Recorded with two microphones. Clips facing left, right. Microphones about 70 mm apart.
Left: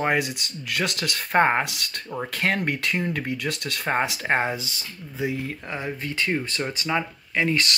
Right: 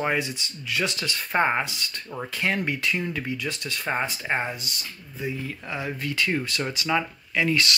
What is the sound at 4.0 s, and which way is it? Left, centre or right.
Speech, left.